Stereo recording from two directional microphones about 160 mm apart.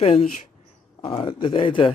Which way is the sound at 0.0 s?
40° left (ahead or behind).